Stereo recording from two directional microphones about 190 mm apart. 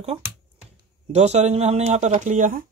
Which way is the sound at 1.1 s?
35° right (ahead or behind).